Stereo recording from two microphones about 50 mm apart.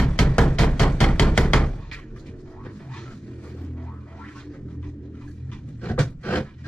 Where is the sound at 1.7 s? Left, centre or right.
Centre.